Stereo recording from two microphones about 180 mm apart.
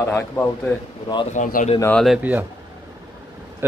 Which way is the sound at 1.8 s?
5° left (ahead or behind).